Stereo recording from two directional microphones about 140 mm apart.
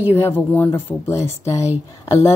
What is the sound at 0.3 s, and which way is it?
Speech, 15° left (ahead or behind).